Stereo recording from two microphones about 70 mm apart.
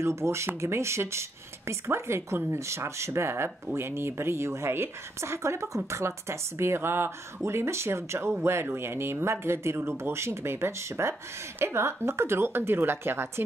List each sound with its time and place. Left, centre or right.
0.0 s speech: right